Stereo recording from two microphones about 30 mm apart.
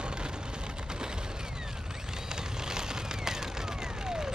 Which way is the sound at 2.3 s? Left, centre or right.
Right.